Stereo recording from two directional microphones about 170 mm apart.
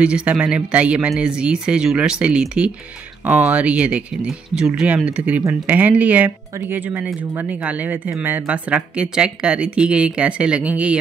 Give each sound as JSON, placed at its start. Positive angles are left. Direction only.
{"t": 0.0, "sound": "speech", "side_deg": -5}